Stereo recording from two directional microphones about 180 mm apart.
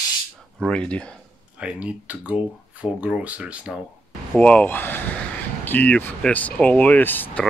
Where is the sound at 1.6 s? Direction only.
5° right (ahead or behind).